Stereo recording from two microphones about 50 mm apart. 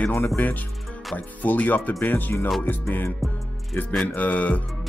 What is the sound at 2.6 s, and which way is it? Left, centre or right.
Music, left.